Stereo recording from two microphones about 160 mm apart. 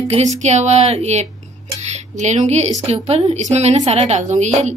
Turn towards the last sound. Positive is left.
turn(degrees=-45)  # may be behind; listen again after turning